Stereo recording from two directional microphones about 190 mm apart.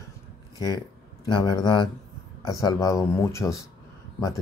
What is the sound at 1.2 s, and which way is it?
Speech, 25° left (ahead or behind).